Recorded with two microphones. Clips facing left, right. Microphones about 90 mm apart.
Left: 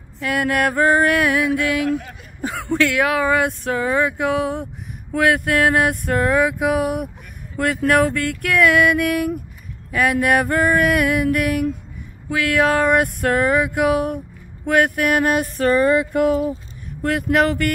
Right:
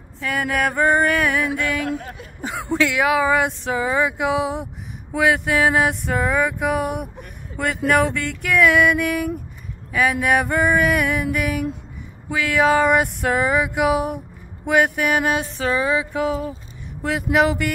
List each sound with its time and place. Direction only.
0.2 s speech: 5° left (ahead or behind)
1.9 s speech: 25° right (ahead or behind)
2.7 s speech: 5° right (ahead or behind)